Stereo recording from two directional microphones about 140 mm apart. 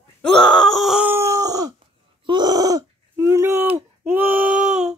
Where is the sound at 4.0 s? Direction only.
15° right (ahead or behind).